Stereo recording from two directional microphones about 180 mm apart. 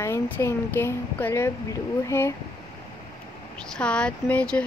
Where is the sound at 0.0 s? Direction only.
15° left (ahead or behind).